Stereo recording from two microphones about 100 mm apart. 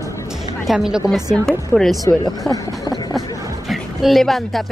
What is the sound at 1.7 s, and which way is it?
Speech, 20° right (ahead or behind).